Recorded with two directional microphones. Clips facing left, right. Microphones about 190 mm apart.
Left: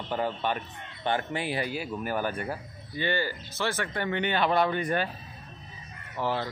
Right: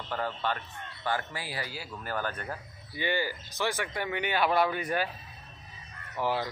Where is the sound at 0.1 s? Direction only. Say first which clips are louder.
Left 3 dB; 20° left (ahead or behind).